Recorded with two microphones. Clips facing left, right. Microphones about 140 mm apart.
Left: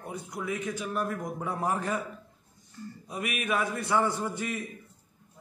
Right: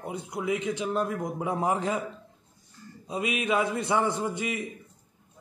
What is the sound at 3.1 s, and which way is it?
A man's voice, 20° right (ahead or behind).